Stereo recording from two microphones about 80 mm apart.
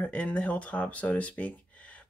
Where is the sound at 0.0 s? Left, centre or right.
Centre.